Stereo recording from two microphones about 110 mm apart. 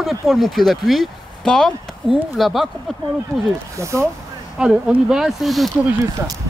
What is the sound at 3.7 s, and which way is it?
Speech, 25° right (ahead or behind).